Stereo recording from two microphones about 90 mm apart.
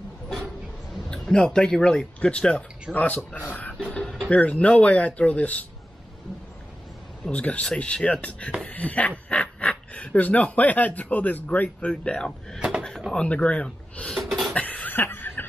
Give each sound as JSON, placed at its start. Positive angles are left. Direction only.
{"t": 0.9, "sound": "speech", "side_deg": 5}
{"t": 3.9, "sound": "a sound", "side_deg": 5}
{"t": 4.3, "sound": "speech", "side_deg": 15}
{"t": 7.2, "sound": "speech", "side_deg": 15}
{"t": 12.5, "sound": "drawer open or close", "side_deg": -15}
{"t": 13.1, "sound": "speech", "side_deg": 10}
{"t": 14.1, "sound": "a sound", "side_deg": 0}
{"t": 14.5, "sound": "cough", "side_deg": 15}